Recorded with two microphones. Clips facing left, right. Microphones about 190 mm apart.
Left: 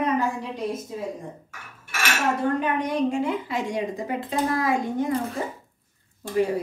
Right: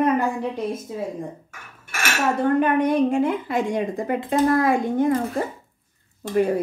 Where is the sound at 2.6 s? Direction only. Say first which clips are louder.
Right 6 dB; 55° right (ahead or behind).